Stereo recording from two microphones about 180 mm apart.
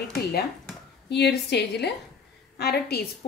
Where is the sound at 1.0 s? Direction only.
70° left (ahead or behind).